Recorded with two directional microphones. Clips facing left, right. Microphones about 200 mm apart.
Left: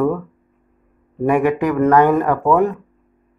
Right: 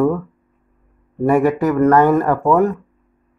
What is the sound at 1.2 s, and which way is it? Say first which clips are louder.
Speech: right 1 dB; 15° left (ahead or behind).